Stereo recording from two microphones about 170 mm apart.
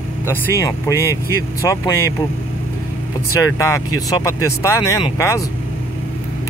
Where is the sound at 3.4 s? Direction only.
20° left (ahead or behind).